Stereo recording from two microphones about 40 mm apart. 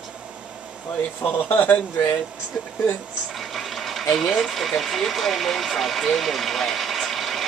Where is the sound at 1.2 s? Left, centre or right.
Left.